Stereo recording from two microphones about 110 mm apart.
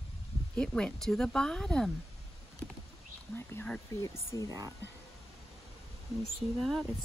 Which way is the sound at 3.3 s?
20° left (ahead or behind).